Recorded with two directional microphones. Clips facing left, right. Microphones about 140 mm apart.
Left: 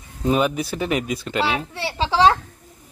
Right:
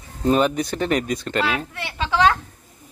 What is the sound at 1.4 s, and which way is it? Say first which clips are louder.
Speech: left 1 dB; 30° left (ahead or behind).